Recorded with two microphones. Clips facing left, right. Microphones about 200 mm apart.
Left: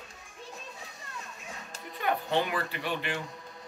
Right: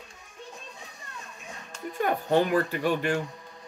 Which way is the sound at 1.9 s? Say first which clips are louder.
Right 5 dB; 45° right (ahead or behind).